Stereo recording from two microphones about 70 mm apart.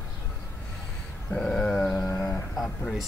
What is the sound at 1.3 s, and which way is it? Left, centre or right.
Dog, centre.